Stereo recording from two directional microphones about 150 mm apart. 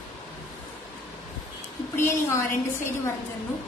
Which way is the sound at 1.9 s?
15° left (ahead or behind).